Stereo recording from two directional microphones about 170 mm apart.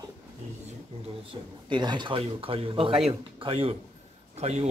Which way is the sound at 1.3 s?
25° right (ahead or behind).